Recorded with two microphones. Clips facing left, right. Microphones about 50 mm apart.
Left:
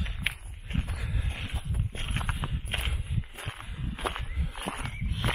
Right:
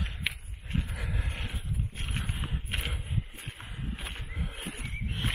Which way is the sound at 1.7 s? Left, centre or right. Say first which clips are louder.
Left 3 dB; left.